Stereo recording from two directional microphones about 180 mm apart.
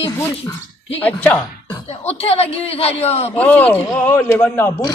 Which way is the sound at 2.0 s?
35° left (ahead or behind).